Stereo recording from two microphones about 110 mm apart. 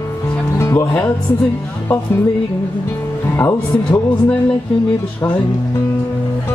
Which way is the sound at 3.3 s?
20° left (ahead or behind).